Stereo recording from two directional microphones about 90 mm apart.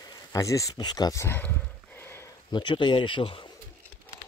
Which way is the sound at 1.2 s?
25° left (ahead or behind).